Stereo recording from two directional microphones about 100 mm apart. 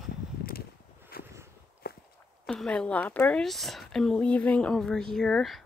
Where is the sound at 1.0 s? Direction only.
25° right (ahead or behind).